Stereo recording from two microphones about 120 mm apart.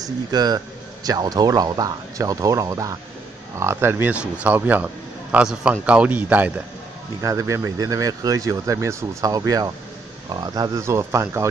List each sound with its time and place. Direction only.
0.0 s speech: 35° right (ahead or behind); by 6.5 s 15° right (ahead or behind)
7.2 s speech: 25° right (ahead or behind)